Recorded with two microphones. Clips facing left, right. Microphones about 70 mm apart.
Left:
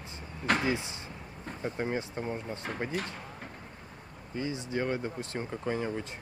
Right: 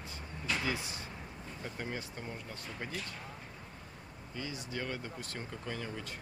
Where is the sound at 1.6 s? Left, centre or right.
Left.